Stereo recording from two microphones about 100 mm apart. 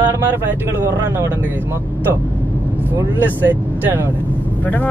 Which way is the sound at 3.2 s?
20° right (ahead or behind).